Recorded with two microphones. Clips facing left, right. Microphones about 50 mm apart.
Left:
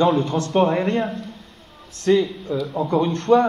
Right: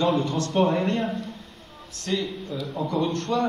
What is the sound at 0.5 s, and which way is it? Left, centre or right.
Speech, centre.